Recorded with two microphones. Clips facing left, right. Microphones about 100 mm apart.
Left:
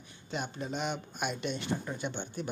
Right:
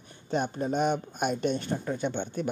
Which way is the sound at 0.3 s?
45° right (ahead or behind).